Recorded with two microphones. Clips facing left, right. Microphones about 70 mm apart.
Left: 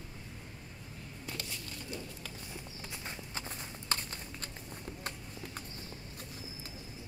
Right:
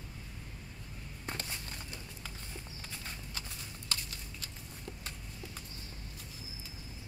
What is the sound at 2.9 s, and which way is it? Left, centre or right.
Clip-clop, left.